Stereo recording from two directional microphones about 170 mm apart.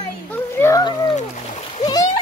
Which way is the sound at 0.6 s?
20° left (ahead or behind).